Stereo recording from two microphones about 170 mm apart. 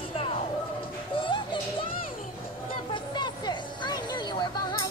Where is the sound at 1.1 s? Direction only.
30° left (ahead or behind).